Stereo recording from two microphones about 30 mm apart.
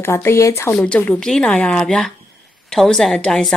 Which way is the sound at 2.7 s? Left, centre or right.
Left.